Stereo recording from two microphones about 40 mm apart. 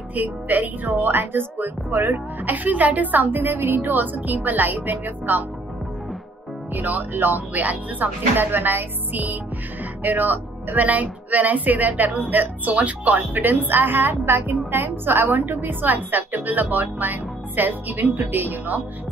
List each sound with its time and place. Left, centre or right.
0.1 s a woman's voice: right
2.4 s a woman's voice: right
6.7 s a woman's voice: right
7.5 s a woman's voice: right
8.4 s a woman's voice: right